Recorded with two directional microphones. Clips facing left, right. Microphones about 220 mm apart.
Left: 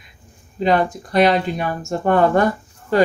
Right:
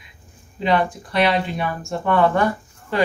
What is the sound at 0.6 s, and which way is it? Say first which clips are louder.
Speech: left 2 dB; 45° left (ahead or behind).